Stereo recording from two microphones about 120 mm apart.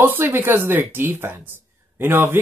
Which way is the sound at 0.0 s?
20° right (ahead or behind).